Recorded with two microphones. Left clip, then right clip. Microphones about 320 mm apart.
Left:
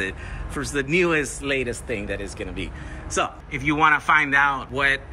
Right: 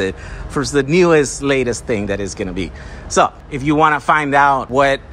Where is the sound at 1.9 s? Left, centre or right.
Right.